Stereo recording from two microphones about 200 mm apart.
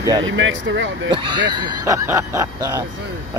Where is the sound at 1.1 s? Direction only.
25° right (ahead or behind).